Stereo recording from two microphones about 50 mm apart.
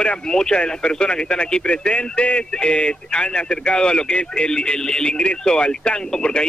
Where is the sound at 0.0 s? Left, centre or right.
Centre.